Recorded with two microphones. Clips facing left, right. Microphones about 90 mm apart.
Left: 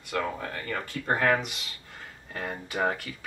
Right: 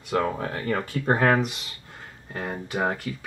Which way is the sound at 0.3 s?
20° right (ahead or behind).